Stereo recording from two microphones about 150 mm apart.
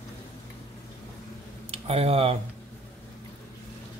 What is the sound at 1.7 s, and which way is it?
Speech, 40° right (ahead or behind).